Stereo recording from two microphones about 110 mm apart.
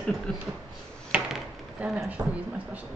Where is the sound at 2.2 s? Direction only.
20° right (ahead or behind).